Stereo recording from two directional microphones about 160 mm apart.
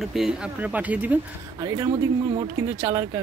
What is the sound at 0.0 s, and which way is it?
Speech, centre (ahead or behind).